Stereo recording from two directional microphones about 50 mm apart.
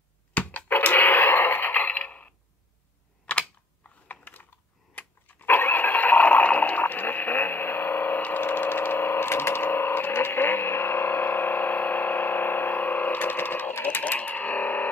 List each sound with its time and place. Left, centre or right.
0.3 s radio: left
3.3 s computer keyboard: left
4.1 s typing: left
4.9 s a sound: left